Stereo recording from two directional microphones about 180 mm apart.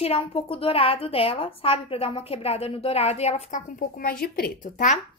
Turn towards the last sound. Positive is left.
turn(degrees=40)  # may be behind; listen again after turning